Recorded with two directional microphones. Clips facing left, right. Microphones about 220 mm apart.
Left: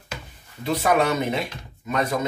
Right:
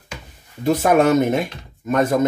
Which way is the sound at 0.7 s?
50° right (ahead or behind).